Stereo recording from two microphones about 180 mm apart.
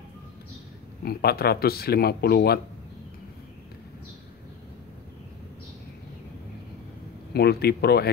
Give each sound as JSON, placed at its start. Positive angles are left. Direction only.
{"t": 1.0, "sound": "speech", "side_deg": 60}
{"t": 7.3, "sound": "speech", "side_deg": 60}